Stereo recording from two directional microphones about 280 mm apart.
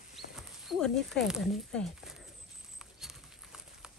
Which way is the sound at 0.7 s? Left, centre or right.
Centre.